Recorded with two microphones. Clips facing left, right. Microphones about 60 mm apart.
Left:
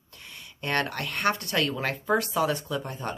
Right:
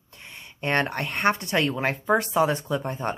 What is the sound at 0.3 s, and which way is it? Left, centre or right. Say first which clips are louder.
Speech: right 4 dB; right.